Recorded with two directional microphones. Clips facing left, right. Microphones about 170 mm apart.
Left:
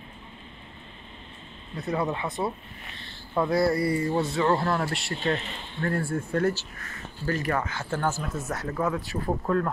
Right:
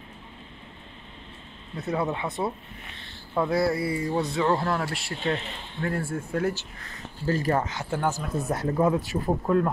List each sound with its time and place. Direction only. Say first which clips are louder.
1.8 s a man's voice: even; centre (ahead or behind)
7.2 s speech: right 3 dB; 30° right (ahead or behind)
8.4 s speech: right 5 dB; 30° right (ahead or behind)